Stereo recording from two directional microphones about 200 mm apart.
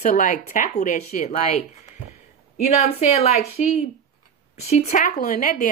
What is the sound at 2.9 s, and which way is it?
Speech, 35° left (ahead or behind).